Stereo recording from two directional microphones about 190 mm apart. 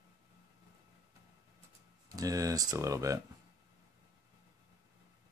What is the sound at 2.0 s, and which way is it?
Speech, 15° right (ahead or behind).